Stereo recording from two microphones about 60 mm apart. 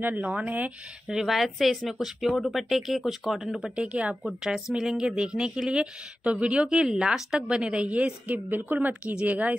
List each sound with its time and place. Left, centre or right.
0.0 s speech: right
1.0 s speech: centre; by 9.6 s right